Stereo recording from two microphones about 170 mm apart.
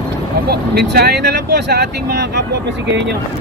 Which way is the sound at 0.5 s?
70° right (ahead or behind).